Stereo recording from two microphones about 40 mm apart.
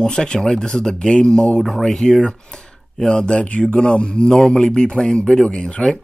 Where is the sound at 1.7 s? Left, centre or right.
Centre.